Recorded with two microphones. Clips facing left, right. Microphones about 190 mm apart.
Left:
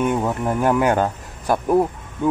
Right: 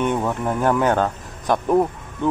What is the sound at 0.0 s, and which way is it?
Speech, 5° left (ahead or behind).